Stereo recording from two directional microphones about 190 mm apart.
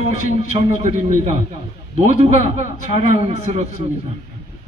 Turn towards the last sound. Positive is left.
turn(degrees=-35)  # may be behind; listen again after turning